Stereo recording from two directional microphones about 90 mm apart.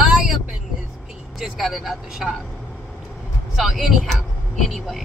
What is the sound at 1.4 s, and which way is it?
Speech, 5° right (ahead or behind).